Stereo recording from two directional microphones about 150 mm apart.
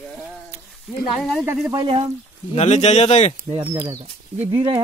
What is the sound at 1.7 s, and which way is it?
Speech, 35° right (ahead or behind).